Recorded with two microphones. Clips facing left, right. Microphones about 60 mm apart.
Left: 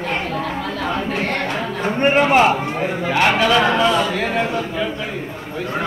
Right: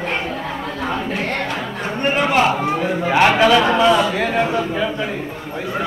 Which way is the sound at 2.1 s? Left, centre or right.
Left.